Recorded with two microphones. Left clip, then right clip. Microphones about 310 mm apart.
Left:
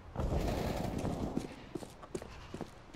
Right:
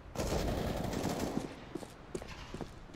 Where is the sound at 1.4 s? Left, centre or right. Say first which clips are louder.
Right 1 dB; centre.